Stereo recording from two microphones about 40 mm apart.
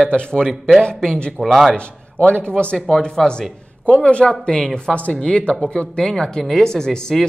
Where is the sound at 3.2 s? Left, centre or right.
Centre.